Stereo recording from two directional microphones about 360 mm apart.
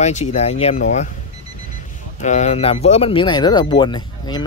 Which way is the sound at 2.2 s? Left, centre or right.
Centre.